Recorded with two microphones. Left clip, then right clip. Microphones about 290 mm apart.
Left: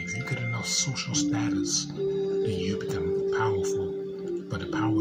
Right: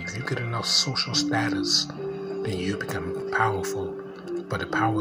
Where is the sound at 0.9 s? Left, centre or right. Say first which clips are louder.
Right 4 dB; centre.